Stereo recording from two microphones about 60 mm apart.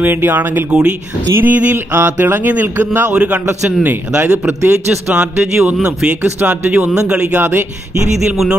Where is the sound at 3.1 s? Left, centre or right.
Centre.